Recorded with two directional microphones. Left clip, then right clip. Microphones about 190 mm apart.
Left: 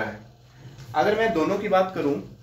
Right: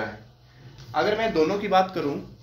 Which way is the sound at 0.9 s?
35° right (ahead or behind).